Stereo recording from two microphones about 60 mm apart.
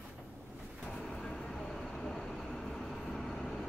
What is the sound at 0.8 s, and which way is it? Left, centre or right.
Train, centre.